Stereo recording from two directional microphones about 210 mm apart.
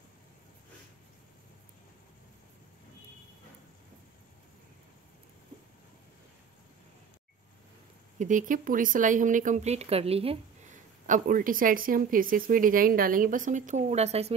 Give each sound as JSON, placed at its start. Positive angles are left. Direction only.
{"t": 8.2, "sound": "speech", "side_deg": -35}